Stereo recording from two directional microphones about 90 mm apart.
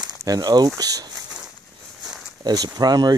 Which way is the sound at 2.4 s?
45° right (ahead or behind).